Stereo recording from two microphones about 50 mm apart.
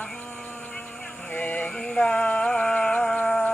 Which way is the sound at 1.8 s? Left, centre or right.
Centre.